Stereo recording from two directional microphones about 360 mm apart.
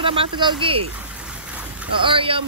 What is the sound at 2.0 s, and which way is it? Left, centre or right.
Speech, centre.